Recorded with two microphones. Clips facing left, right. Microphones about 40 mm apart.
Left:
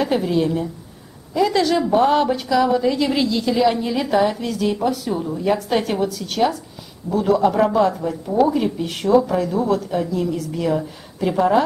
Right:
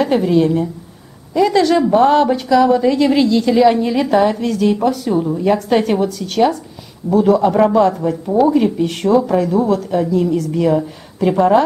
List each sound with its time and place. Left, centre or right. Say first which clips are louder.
0.0 s a woman's voice: right 5 dB; centre